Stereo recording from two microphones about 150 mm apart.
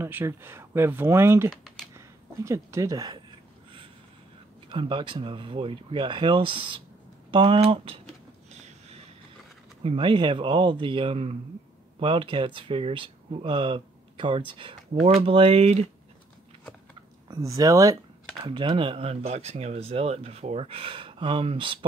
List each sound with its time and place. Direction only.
0.0 s speech: 15° right (ahead or behind)
1.5 s computer keyboard: centre (ahead or behind)
2.0 s speech: 20° right (ahead or behind)
4.6 s speech: 35° right (ahead or behind)
8.5 s a sound: 45° right (ahead or behind)
9.8 s speech: 35° right (ahead or behind)
17.3 s speech: 20° right (ahead or behind)